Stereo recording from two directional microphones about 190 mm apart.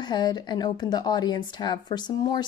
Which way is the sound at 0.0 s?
25° left (ahead or behind).